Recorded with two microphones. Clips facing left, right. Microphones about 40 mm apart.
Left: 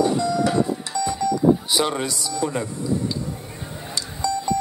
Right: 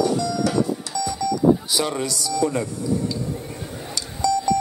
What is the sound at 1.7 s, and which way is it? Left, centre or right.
Speech, left.